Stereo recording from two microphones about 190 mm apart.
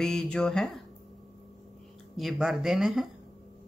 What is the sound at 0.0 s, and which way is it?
Speech, centre (ahead or behind).